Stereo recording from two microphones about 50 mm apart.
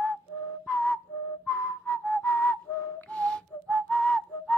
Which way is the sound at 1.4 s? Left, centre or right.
Left.